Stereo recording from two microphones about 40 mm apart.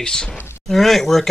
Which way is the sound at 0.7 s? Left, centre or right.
Centre.